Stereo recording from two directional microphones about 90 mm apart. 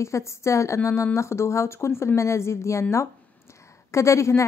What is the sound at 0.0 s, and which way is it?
Speech, 30° left (ahead or behind).